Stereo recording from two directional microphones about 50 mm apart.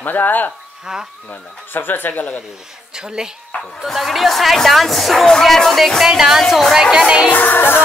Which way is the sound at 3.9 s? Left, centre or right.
Centre.